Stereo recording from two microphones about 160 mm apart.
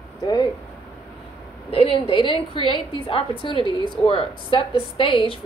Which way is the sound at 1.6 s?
35° left (ahead or behind).